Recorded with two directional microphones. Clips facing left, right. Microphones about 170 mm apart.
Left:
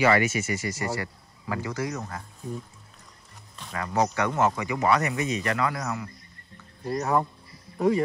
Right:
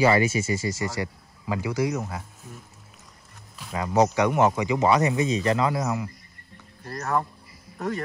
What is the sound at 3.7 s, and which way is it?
Speech, 20° right (ahead or behind).